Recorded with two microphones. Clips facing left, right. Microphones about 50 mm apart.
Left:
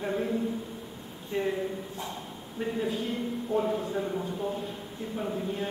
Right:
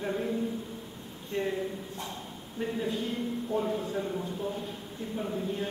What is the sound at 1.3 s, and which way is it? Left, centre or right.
Speech, centre.